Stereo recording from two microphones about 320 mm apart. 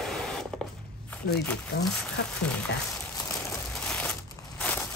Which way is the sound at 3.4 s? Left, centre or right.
Centre.